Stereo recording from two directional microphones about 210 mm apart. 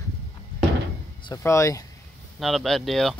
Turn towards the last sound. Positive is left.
turn(degrees=0)  # may be behind; listen again after turning